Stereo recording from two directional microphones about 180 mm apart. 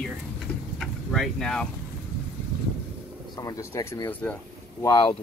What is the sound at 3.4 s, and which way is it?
Speech, 15° left (ahead or behind).